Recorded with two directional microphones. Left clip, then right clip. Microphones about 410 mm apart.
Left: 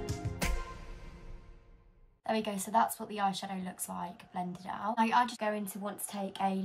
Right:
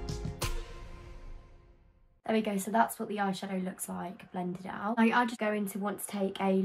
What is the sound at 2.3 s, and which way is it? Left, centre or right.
A woman's voice, centre.